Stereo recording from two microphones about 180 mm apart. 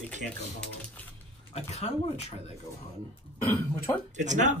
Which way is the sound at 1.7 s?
35° left (ahead or behind).